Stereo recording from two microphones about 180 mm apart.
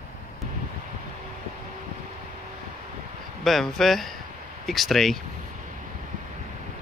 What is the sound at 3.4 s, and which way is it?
Speech, centre (ahead or behind).